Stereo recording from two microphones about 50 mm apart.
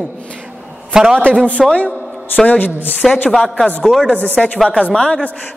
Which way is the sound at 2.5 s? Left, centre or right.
Left.